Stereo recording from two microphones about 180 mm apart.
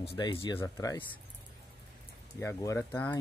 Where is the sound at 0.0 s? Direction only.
30° left (ahead or behind).